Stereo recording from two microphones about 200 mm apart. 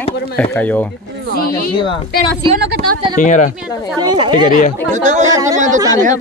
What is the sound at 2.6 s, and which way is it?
Speech, 55° right (ahead or behind).